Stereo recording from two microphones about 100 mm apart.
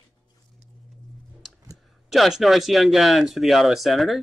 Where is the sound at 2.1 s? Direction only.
Centre (ahead or behind).